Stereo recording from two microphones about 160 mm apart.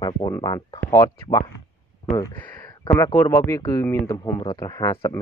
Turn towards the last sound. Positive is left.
turn(degrees=25)  # may be behind; listen again after turning